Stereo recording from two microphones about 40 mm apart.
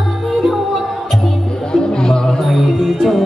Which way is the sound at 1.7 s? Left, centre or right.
Left.